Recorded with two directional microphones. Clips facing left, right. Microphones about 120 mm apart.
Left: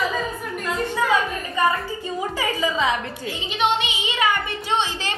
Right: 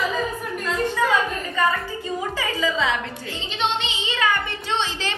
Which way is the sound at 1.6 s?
15° left (ahead or behind).